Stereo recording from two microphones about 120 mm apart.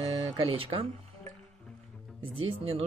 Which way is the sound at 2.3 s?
50° right (ahead or behind).